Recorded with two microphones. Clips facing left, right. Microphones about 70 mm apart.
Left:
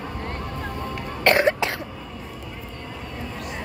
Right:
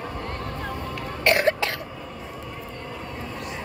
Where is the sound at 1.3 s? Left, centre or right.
Left.